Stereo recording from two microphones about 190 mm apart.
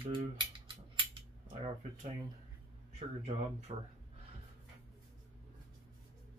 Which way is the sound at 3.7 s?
30° right (ahead or behind).